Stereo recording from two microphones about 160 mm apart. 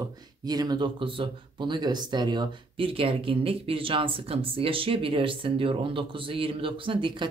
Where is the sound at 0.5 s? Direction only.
25° right (ahead or behind).